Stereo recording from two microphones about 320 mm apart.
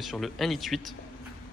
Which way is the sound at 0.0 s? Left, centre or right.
Centre.